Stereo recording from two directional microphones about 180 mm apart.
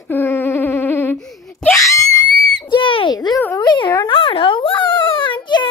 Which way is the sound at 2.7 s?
30° left (ahead or behind).